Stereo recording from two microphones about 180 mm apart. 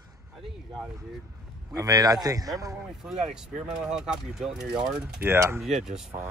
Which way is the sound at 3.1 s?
5° right (ahead or behind).